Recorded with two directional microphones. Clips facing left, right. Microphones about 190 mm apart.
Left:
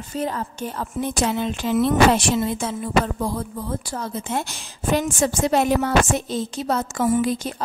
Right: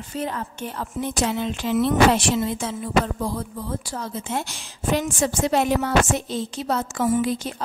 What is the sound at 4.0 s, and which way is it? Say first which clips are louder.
A woman's voice: left 2 dB; 50° left (ahead or behind).